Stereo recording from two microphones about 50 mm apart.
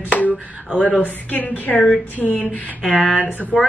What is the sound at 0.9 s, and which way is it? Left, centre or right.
Speech, left.